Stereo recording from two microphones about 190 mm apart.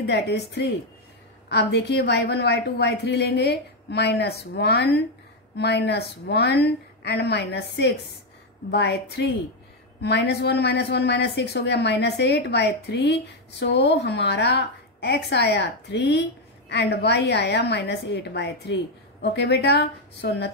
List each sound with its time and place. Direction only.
0.0 s a woman's voice: 65° left (ahead or behind)